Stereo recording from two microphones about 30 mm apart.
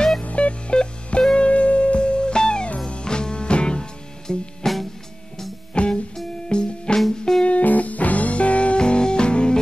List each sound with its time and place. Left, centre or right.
0.2 s music: left
4.3 s music: centre
5.7 s music: left
7.1 s music: centre
7.6 s music: left
8.7 s music: left